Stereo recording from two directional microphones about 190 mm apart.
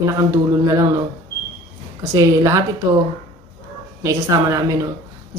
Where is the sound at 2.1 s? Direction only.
15° right (ahead or behind).